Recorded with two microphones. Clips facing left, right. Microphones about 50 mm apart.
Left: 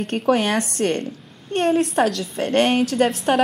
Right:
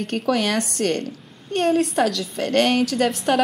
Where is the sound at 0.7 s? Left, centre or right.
Left.